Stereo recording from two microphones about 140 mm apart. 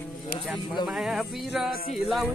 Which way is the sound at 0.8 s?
5° right (ahead or behind).